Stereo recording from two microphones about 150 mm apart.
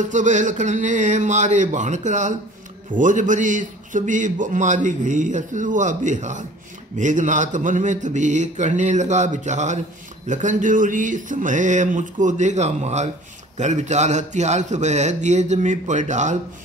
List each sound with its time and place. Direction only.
0.0 s a man's voice: 55° right (ahead or behind)